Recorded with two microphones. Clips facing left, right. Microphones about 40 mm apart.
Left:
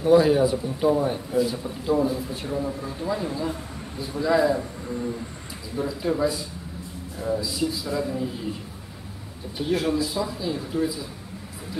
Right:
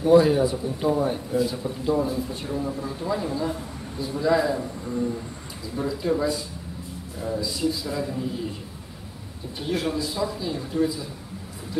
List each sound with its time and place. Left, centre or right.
0.1 s a man's voice: centre
9.6 s a man's voice: centre